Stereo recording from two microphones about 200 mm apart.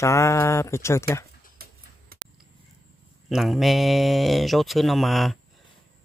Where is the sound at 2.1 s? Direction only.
50° right (ahead or behind).